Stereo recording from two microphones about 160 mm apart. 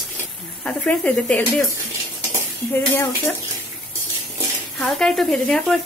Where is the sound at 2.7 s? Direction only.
15° left (ahead or behind).